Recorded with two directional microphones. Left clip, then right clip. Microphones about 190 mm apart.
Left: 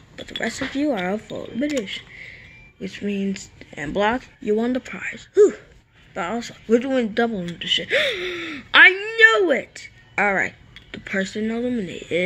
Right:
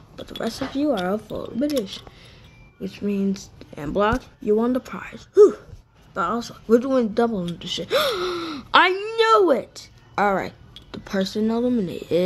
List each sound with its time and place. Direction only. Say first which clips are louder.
0.1 s speech: left 2 dB; 10° right (ahead or behind)
0.7 s speech: right 1 dB; centre (ahead or behind)
7.5 s speech: left 3 dB; 15° right (ahead or behind)
8.7 s a sound: left 4 dB; 15° right (ahead or behind)
11.2 s speech: right 3 dB; 15° right (ahead or behind)